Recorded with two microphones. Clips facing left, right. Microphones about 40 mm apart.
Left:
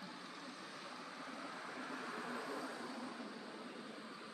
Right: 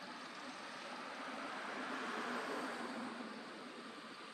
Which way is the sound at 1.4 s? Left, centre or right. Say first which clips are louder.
Right 3 dB; right.